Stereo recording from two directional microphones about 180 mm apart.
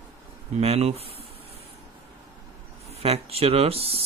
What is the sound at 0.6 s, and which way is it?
Speech, 35° right (ahead or behind).